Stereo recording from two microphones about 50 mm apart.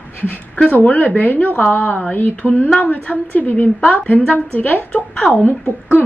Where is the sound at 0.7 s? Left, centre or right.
Left.